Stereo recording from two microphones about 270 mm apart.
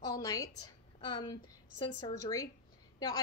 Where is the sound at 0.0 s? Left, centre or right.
Centre.